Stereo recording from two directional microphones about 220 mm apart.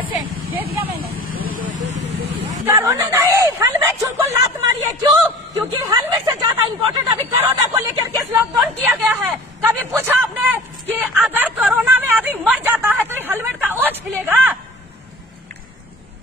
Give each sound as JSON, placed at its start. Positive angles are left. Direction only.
{"t": 0.1, "sound": "vehicle", "side_deg": -10}
{"t": 1.3, "sound": "vehicle", "side_deg": -40}
{"t": 2.3, "sound": "hubbub", "side_deg": -10}
{"t": 5.9, "sound": "a man's voice", "side_deg": -15}